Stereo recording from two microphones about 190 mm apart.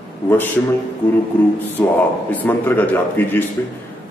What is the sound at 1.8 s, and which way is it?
A man's voice, 15° left (ahead or behind).